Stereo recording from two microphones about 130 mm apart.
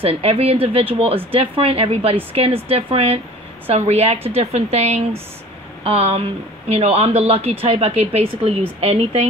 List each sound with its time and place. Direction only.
0.0 s speech: 50° right (ahead or behind)